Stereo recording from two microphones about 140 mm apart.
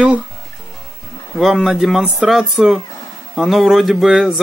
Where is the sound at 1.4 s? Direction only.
Centre (ahead or behind).